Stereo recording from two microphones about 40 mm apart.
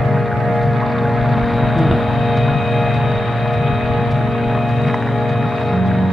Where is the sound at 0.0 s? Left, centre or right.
Centre.